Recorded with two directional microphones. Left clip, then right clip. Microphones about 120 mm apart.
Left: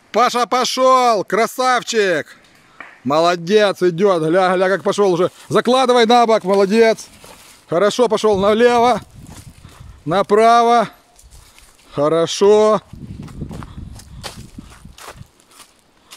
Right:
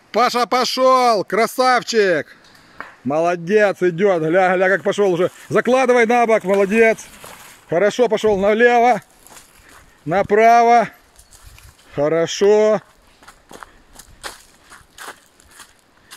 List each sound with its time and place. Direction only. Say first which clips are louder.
0.1 s speech: left 1 dB; 5° left (ahead or behind)
3.1 s speech: left 3 dB; 45° left (ahead or behind)
10.1 s speech: even; 50° left (ahead or behind)
13.2 s walk: left 3 dB; centre (ahead or behind)